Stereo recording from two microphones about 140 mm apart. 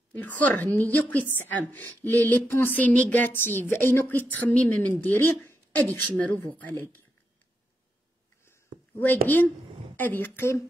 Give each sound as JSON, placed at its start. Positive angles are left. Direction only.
{"t": 0.1, "sound": "speech", "side_deg": 10}
{"t": 9.0, "sound": "speech", "side_deg": 15}